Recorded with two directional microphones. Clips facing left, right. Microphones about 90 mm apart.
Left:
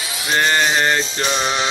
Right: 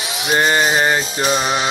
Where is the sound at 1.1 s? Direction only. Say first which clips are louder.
Right 2 dB; 10° right (ahead or behind).